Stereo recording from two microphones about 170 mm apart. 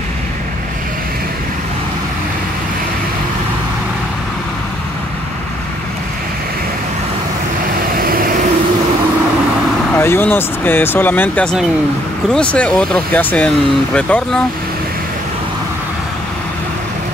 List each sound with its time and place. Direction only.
7.9 s vehicle: 55° right (ahead or behind)
9.9 s speech: 15° left (ahead or behind)